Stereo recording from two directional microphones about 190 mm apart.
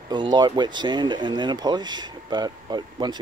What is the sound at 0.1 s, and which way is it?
Speech, 25° right (ahead or behind).